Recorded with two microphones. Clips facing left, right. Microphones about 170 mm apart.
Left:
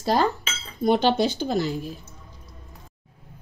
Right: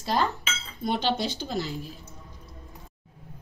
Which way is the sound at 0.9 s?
50° left (ahead or behind).